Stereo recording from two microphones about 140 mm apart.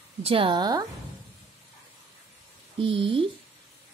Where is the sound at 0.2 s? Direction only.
40° right (ahead or behind).